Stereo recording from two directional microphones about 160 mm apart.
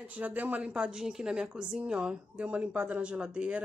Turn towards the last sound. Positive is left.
turn(degrees=-5)  # may be behind; listen again after turning